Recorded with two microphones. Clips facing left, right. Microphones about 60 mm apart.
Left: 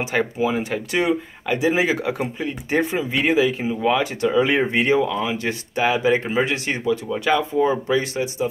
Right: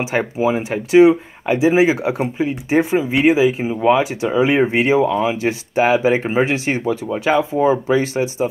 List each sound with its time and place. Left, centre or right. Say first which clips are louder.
0.1 s speech: right 3 dB; right